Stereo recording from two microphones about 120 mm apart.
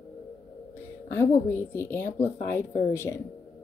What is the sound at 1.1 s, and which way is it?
Speech, 20° left (ahead or behind).